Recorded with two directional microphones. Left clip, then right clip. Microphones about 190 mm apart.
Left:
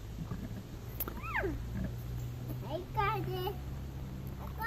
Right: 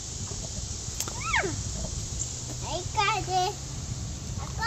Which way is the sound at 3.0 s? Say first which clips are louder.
Right 9 dB; 5° left (ahead or behind).